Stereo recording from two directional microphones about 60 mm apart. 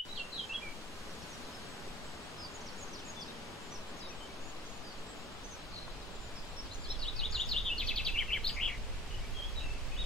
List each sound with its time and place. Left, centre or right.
7.0 s bird vocalization: centre